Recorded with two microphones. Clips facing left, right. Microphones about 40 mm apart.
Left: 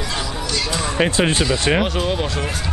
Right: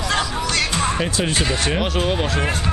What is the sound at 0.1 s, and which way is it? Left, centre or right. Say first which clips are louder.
Music: right 7 dB; right.